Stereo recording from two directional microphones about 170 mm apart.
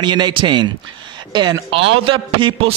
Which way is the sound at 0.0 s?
25° right (ahead or behind).